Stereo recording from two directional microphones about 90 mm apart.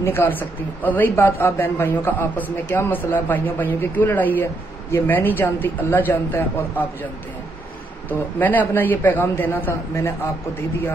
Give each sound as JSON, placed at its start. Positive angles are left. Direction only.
{"t": 0.0, "sound": "a man's voice", "side_deg": 25}
{"t": 8.1, "sound": "a man's voice", "side_deg": 20}